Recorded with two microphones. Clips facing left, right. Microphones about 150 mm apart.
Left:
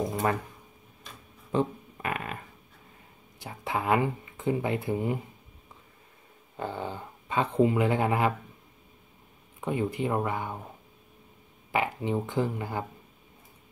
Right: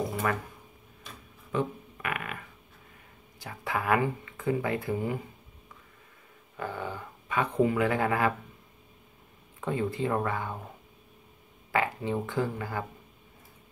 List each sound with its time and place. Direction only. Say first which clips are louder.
1.5 s speech: left 3 dB; 30° left (ahead or behind)
6.5 s speech: left 1 dB; 25° left (ahead or behind)
9.6 s speech: left 1 dB; 15° left (ahead or behind)
11.7 s speech: left 1 dB; 20° left (ahead or behind)